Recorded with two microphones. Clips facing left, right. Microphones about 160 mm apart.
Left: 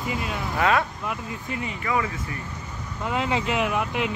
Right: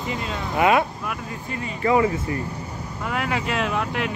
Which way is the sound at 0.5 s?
15° right (ahead or behind).